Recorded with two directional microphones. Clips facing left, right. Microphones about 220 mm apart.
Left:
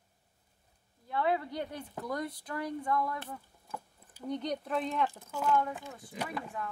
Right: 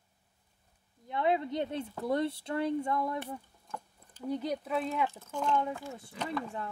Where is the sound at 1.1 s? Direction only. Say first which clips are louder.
Right 2 dB; 20° right (ahead or behind).